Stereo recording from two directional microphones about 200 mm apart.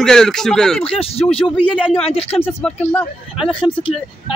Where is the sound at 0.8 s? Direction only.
30° left (ahead or behind).